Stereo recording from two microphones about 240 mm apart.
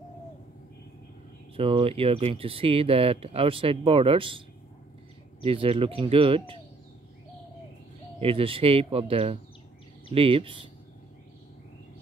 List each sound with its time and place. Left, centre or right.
1.6 s speech: right
5.4 s speech: right
8.2 s speech: right